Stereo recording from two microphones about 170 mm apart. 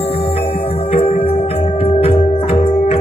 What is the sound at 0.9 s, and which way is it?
Music, 35° left (ahead or behind).